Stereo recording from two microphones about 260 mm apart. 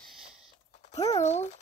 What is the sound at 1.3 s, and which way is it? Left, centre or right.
Speech, left.